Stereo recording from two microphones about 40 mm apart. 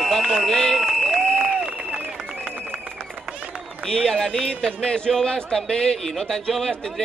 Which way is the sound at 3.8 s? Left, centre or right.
Centre.